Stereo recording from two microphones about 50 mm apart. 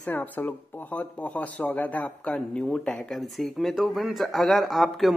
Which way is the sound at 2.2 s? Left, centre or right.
Centre.